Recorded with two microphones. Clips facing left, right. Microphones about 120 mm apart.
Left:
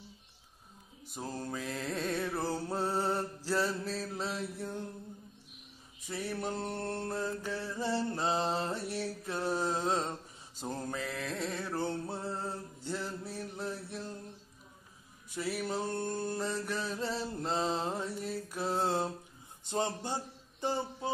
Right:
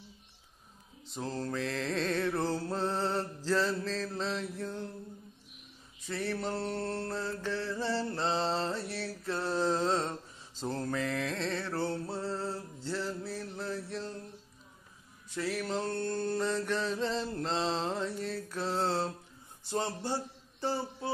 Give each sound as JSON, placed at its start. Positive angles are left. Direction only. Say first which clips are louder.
{"t": 1.0, "sound": "mantra", "louder": "right 3 dB", "side_deg": 10}
{"t": 6.0, "sound": "mantra", "louder": "right 2 dB", "side_deg": 15}
{"t": 15.2, "sound": "mantra", "louder": "right 1 dB", "side_deg": 10}
{"t": 19.6, "sound": "speech", "louder": "even", "side_deg": 20}
{"t": 20.6, "sound": "a sound", "louder": "even", "side_deg": 20}